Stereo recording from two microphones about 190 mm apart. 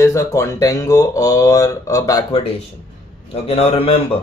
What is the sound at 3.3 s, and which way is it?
Speech, 35° left (ahead or behind).